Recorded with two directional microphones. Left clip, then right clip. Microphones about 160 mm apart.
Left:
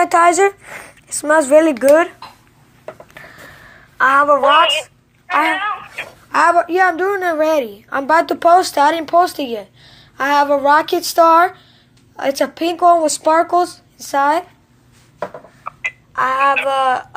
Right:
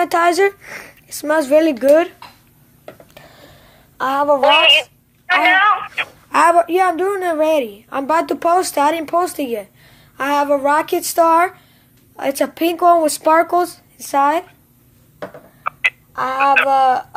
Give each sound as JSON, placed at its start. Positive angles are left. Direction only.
{"t": 0.0, "sound": "speech", "side_deg": -20}
{"t": 0.6, "sound": "a woman's voice", "side_deg": -35}
{"t": 0.8, "sound": "speech", "side_deg": -15}
{"t": 1.6, "sound": "speech", "side_deg": -25}
{"t": 2.8, "sound": "a sound", "side_deg": -35}
{"t": 4.4, "sound": "a woman's voice", "side_deg": -40}
{"t": 15.7, "sound": "a sound", "side_deg": -35}
{"t": 16.2, "sound": "speech", "side_deg": -20}